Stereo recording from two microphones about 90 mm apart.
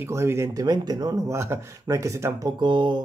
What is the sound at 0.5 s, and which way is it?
Speech, 45° right (ahead or behind).